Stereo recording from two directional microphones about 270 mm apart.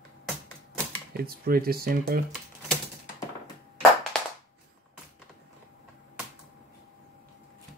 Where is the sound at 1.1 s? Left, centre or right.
Right.